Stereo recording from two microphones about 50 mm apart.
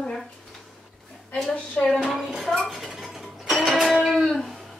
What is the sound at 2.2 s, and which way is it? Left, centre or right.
Speech, centre.